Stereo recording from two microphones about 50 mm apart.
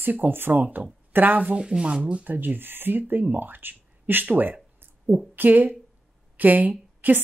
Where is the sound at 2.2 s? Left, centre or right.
Right.